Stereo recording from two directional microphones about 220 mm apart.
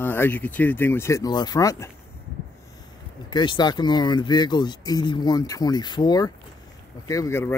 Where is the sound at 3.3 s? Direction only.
20° left (ahead or behind).